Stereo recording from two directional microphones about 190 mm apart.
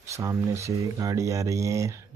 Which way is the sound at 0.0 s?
15° right (ahead or behind).